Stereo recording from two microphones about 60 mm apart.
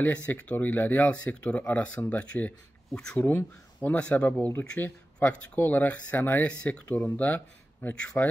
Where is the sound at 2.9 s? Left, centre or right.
Centre.